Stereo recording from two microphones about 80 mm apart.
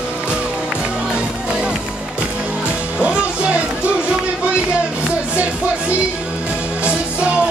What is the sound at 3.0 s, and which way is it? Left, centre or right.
Music, centre.